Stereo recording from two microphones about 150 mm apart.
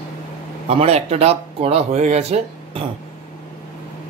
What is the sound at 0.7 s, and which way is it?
Speech, 40° right (ahead or behind).